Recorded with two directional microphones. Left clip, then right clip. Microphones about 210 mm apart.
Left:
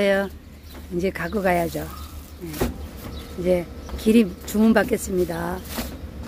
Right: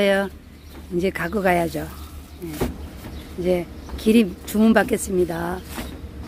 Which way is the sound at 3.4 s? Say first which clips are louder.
Left 1 dB; 10° right (ahead or behind).